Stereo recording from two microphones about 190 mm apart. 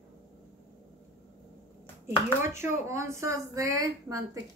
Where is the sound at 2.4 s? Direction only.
15° right (ahead or behind).